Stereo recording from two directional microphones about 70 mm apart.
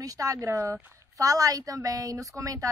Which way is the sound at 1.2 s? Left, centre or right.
Right.